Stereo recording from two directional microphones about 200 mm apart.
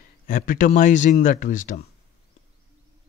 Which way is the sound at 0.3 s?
45° left (ahead or behind).